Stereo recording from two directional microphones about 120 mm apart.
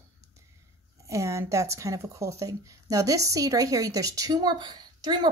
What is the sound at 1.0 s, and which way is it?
Speech, 25° right (ahead or behind).